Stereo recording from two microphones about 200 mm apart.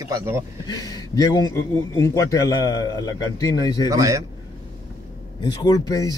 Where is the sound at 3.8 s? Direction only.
15° right (ahead or behind).